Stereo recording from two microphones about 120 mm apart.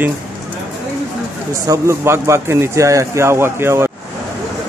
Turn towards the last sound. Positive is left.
turn(degrees=-20)  # may be behind; listen again after turning